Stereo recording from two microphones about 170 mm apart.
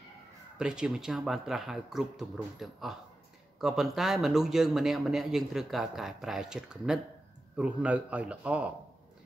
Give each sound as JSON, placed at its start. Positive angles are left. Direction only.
{"t": 0.6, "sound": "a man's voice", "side_deg": -5}